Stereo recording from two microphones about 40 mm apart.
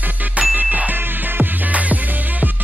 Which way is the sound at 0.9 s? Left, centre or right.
Right.